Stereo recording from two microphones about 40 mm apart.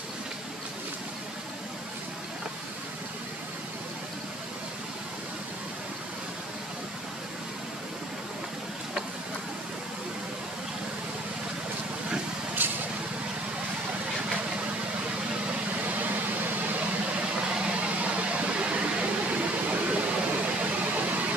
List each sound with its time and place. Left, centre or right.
12.6 s vehicle: right
15.8 s vehicle: right
18.0 s a sound: right